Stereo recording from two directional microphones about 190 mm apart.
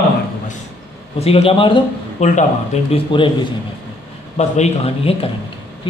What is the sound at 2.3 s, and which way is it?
Speech, 40° left (ahead or behind).